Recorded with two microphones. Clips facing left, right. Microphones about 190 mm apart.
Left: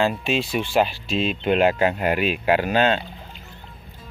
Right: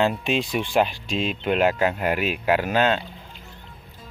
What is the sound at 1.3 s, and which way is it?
Speech, 20° left (ahead or behind).